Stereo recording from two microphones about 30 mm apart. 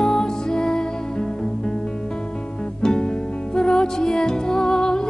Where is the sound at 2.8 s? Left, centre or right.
Left.